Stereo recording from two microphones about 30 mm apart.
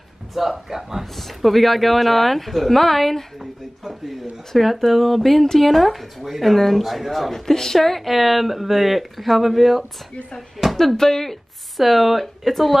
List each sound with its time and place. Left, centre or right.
0.3 s a man's voice: centre
1.1 s speech: centre
4.5 s speech: centre
7.3 s speech: centre
11.0 s speech: centre
11.7 s speech: centre